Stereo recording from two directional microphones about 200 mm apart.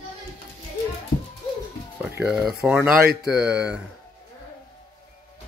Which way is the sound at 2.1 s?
5° right (ahead or behind).